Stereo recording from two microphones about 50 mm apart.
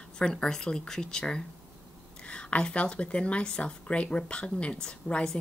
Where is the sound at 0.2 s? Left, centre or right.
Centre.